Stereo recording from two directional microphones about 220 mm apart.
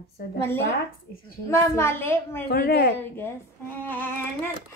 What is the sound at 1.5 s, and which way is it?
Speech, 10° left (ahead or behind).